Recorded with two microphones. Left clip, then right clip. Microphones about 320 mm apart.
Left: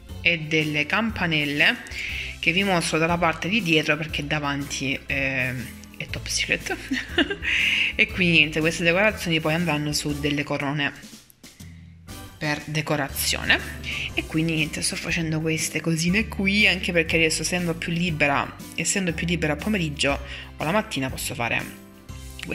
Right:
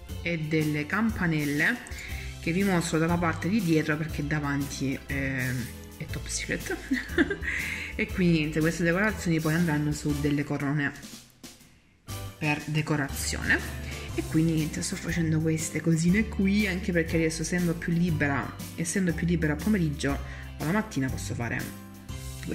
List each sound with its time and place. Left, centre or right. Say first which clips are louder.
0.2 s speech: left 7 dB; centre
2.4 s speech: left 8 dB; left
2.7 s speech: left 5 dB; centre
3.4 s speech: left 6 dB; left
3.7 s speech: left 6 dB; centre
12.4 s speech: left 3 dB; centre